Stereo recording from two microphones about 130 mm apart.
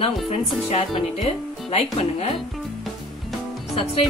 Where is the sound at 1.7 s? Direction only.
50° left (ahead or behind).